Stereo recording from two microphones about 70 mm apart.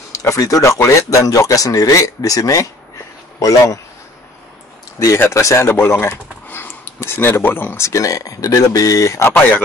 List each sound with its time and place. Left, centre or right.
0.1 s speech: left
4.9 s speech: left
9.3 s speech: left